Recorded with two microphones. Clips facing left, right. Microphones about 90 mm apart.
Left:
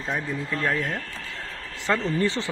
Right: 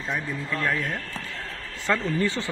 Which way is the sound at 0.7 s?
20° left (ahead or behind).